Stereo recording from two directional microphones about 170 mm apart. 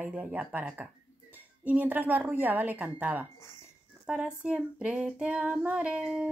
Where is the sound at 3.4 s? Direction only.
15° left (ahead or behind).